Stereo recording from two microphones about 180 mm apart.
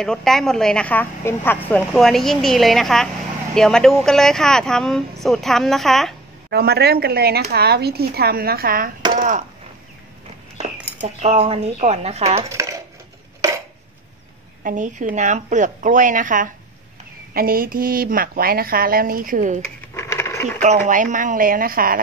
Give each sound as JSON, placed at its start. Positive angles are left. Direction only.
{"t": 0.0, "sound": "a woman's voice", "side_deg": 0}
{"t": 6.5, "sound": "speech", "side_deg": -60}
{"t": 9.1, "sound": "chop", "side_deg": -50}
{"t": 11.0, "sound": "speech", "side_deg": -40}
{"t": 12.4, "sound": "a sound", "side_deg": -15}
{"t": 14.6, "sound": "speech", "side_deg": -45}
{"t": 19.9, "sound": "sewing machine", "side_deg": 15}
{"t": 20.6, "sound": "speech", "side_deg": -40}